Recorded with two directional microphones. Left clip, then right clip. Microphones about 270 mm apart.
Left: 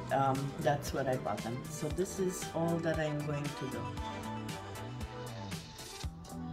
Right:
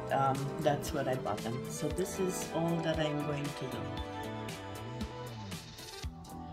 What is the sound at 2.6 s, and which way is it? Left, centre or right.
Speech, right.